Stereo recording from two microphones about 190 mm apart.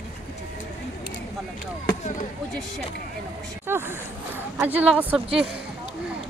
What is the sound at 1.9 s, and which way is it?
Speech, 45° left (ahead or behind).